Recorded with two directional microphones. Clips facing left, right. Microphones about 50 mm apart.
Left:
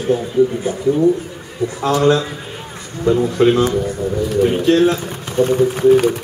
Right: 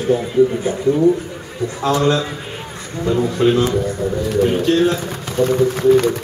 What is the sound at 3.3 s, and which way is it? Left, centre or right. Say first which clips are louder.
Speech: left 2 dB; left.